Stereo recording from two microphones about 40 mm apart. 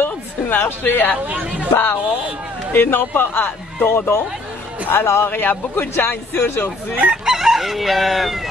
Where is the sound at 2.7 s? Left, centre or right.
Left.